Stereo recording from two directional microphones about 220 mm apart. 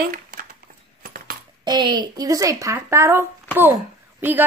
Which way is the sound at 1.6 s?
20° right (ahead or behind).